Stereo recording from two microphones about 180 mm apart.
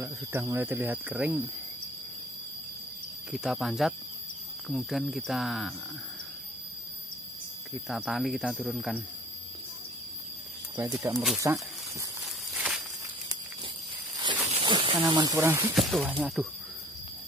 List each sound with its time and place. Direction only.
0.0 s speech: 15° right (ahead or behind)
3.3 s speech: 5° right (ahead or behind)
7.7 s speech: centre (ahead or behind)
11.0 s speech: 20° right (ahead or behind)
12.5 s walk: 5° right (ahead or behind)
14.1 s a sound: 25° right (ahead or behind)
14.5 s speech: 25° right (ahead or behind); by 16.4 s 5° right (ahead or behind)